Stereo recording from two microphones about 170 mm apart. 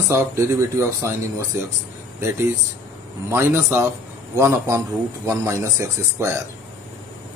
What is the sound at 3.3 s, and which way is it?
Speech, 15° right (ahead or behind).